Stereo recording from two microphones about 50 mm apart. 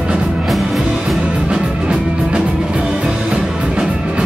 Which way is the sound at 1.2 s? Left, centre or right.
Centre.